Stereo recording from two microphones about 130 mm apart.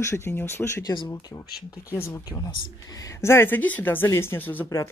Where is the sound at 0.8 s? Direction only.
30° left (ahead or behind).